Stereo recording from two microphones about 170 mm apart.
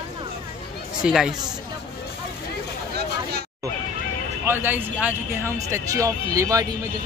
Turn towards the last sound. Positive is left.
turn(degrees=-20)  # may be behind; listen again after turning